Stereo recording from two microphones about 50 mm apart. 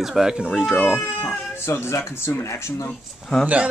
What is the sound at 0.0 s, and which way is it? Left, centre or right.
Speech, centre.